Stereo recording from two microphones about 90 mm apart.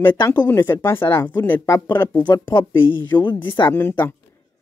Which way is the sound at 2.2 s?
60° left (ahead or behind).